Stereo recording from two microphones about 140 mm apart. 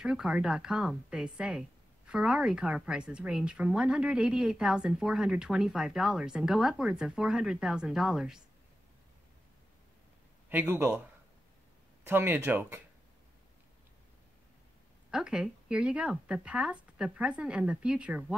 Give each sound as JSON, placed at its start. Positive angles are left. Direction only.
{"t": 0.0, "sound": "a woman's voice", "side_deg": -5}
{"t": 10.5, "sound": "speech", "side_deg": -15}
{"t": 12.1, "sound": "speech", "side_deg": -15}
{"t": 15.0, "sound": "speech", "side_deg": -5}